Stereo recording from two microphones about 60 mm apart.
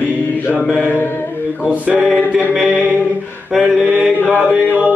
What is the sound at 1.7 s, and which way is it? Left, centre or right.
Mantra, right.